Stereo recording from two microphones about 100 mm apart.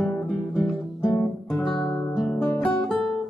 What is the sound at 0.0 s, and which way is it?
Guitar, centre (ahead or behind).